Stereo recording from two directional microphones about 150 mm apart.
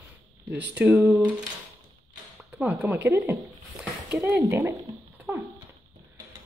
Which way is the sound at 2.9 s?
20° right (ahead or behind).